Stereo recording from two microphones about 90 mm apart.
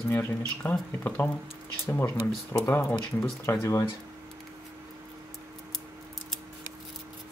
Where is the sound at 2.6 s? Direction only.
30° left (ahead or behind).